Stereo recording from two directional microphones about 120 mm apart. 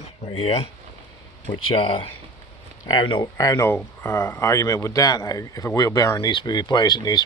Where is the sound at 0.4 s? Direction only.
55° left (ahead or behind).